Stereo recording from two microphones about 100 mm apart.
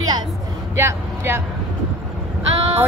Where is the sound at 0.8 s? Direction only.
25° right (ahead or behind).